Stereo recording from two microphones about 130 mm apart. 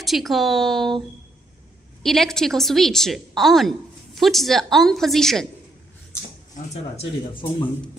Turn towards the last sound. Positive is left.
turn(degrees=40)  # may be behind; listen again after turning